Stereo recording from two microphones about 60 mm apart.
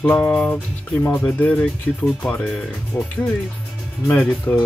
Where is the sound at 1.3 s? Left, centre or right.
Left.